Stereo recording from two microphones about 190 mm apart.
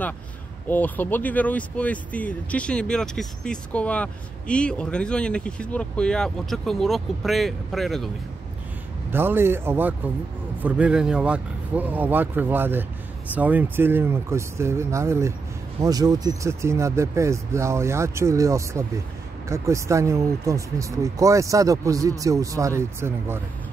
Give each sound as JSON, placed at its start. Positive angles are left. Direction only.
{"t": 0.7, "sound": "speech", "side_deg": 10}
{"t": 9.1, "sound": "speech", "side_deg": -10}